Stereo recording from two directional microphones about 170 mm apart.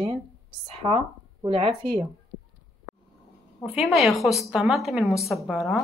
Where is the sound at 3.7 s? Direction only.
Centre (ahead or behind).